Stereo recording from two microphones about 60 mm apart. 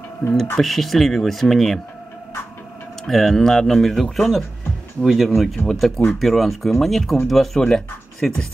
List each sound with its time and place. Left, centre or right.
0.2 s speech: centre
3.1 s speech: centre